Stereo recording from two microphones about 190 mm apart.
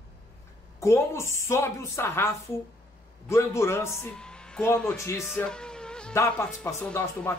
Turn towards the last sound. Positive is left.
turn(degrees=10)  # may be behind; listen again after turning